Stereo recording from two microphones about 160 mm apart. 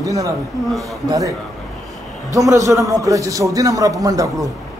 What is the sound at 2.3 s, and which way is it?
A man's voice, 20° right (ahead or behind).